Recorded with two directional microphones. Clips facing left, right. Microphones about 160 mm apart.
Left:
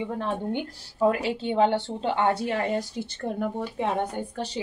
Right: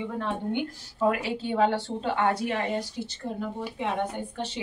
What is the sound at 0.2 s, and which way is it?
A woman's voice, 35° left (ahead or behind).